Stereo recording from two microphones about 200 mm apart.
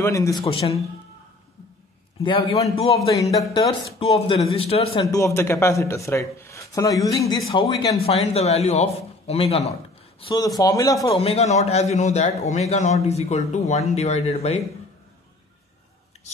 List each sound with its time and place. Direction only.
0.0 s a man's voice: 15° left (ahead or behind)
2.2 s a man's voice: 25° left (ahead or behind)
5.1 s a man's voice: 15° left (ahead or behind)
8.0 s a man's voice: 30° left (ahead or behind)
10.2 s a man's voice: 20° left (ahead or behind)
11.1 s a man's voice: 30° left (ahead or behind)